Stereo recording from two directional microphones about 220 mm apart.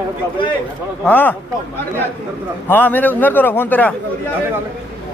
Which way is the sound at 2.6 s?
10° left (ahead or behind).